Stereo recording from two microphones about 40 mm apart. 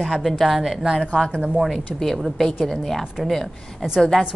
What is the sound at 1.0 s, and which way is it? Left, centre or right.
Speech, left.